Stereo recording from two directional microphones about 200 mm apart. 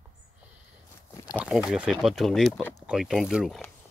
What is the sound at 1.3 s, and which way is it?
Speech, 5° right (ahead or behind).